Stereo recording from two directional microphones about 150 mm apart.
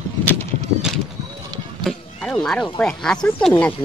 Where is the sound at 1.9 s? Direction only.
5° left (ahead or behind).